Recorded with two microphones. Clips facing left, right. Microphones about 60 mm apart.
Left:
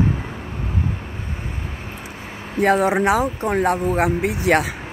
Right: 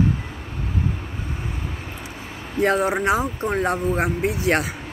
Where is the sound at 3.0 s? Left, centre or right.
Left.